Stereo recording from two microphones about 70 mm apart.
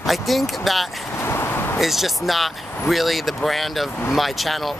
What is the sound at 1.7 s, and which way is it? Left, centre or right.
Speech, centre.